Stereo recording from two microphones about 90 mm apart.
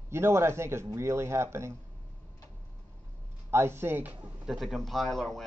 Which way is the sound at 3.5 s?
25° right (ahead or behind).